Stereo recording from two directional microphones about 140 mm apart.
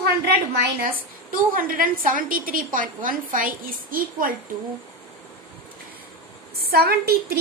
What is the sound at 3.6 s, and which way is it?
Speech, 90° right.